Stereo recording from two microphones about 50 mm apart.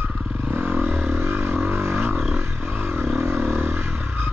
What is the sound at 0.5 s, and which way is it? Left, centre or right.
Vehicle, right.